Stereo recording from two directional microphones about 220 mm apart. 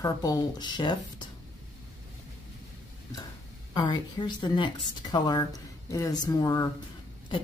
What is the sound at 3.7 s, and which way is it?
Speech, 20° left (ahead or behind).